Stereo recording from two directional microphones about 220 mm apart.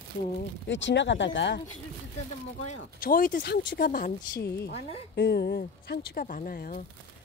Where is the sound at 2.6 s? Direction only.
35° left (ahead or behind).